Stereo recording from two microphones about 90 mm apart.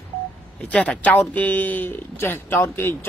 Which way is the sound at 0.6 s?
10° left (ahead or behind).